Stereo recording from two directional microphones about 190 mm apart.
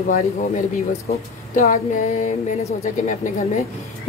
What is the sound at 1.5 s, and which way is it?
A woman's voice, 40° left (ahead or behind).